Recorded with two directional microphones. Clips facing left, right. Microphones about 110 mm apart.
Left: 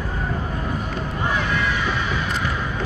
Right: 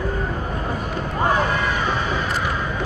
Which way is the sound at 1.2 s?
40° right (ahead or behind).